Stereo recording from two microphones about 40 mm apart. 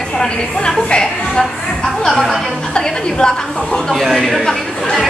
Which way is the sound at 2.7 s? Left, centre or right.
Centre.